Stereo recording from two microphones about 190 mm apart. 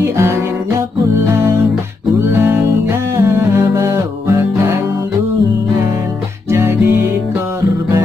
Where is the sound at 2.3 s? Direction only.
10° right (ahead or behind).